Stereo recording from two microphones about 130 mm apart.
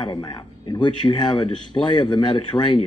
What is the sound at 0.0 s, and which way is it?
A man's voice, 35° left (ahead or behind).